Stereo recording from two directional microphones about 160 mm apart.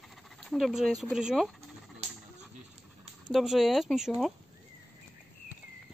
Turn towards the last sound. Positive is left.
turn(degrees=0)  # may be behind; listen again after turning